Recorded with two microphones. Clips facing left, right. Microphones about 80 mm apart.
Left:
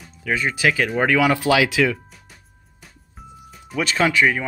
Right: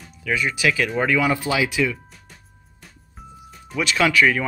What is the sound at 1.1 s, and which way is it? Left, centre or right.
Speech, left.